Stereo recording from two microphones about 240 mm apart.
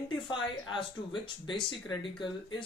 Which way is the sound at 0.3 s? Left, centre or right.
Centre.